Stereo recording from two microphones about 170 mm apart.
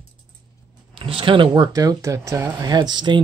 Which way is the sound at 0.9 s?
30° right (ahead or behind).